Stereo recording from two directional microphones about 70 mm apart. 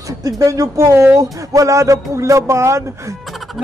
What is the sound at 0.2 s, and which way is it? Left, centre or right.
Speech, right.